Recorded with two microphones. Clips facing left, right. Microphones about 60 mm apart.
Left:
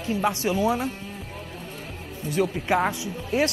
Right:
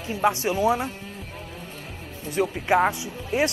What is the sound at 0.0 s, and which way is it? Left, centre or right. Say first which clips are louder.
Speech: right 1 dB; right.